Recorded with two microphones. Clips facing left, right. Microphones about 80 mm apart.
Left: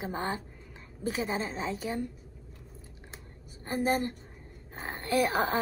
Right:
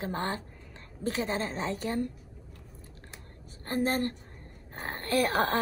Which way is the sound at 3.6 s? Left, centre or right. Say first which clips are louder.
Even; centre.